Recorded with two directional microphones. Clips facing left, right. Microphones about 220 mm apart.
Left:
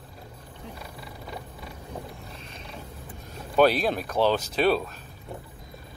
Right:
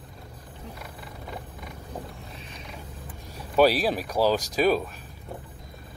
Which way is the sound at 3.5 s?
5° right (ahead or behind).